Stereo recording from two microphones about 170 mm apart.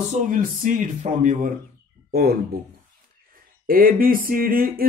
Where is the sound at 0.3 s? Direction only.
50° right (ahead or behind).